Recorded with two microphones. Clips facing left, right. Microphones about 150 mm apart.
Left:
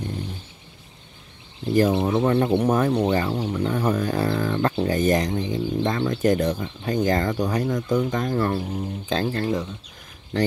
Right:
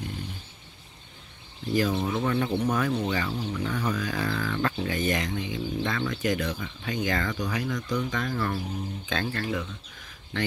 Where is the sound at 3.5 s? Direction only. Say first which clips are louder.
Left 7 dB; 35° left (ahead or behind).